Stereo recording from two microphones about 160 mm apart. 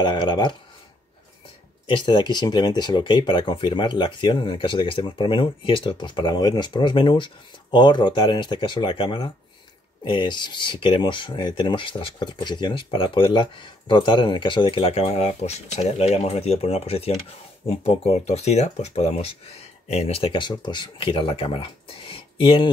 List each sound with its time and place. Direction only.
0.0 s speech: 30° left (ahead or behind)
1.9 s speech: 30° left (ahead or behind)